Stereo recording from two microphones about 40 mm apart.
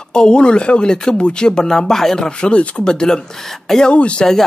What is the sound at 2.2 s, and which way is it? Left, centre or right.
Speech, left.